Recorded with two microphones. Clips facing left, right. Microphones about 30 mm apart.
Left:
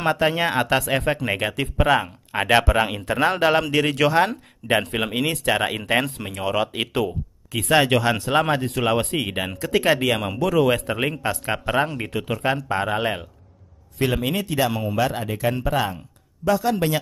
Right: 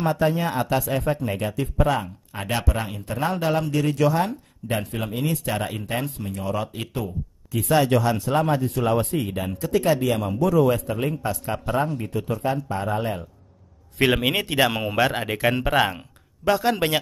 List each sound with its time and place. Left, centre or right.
0.0 s speech: left
14.0 s speech: right